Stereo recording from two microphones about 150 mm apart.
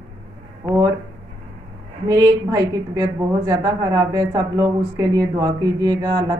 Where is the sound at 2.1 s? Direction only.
25° right (ahead or behind).